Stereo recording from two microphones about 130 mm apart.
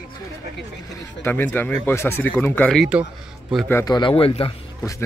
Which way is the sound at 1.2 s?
15° left (ahead or behind).